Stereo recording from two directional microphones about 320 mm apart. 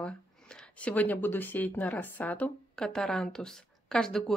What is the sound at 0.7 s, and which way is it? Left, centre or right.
Speech, centre.